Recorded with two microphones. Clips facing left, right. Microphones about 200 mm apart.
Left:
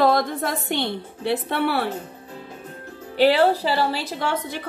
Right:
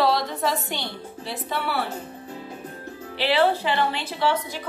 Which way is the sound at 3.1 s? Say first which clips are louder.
Left 4 dB; 45° left (ahead or behind).